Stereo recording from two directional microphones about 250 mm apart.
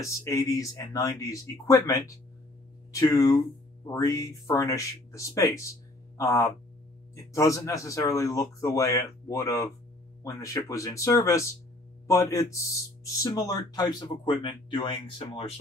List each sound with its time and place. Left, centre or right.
0.0 s speech: centre